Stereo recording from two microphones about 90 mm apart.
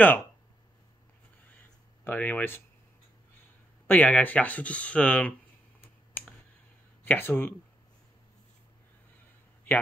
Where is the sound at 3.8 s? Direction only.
20° left (ahead or behind).